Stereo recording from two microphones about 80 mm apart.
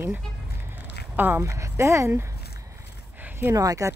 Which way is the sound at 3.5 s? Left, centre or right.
Right.